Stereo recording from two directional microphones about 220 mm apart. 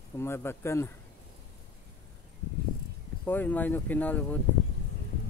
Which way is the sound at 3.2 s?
10° left (ahead or behind).